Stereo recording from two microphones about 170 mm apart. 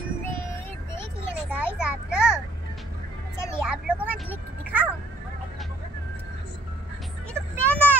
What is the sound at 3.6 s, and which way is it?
Vehicle, 5° right (ahead or behind).